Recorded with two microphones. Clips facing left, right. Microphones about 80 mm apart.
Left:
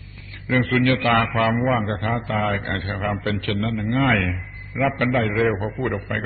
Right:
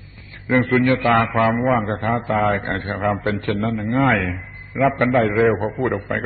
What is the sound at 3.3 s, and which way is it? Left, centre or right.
Speech, right.